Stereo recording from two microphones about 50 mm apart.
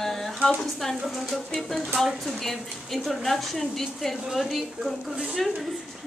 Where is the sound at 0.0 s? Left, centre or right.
Centre.